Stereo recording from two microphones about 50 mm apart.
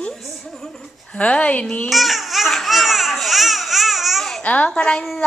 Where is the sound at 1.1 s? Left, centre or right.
Left.